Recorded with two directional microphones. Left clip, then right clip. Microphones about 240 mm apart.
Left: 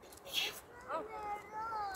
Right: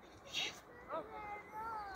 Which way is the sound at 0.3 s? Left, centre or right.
Left.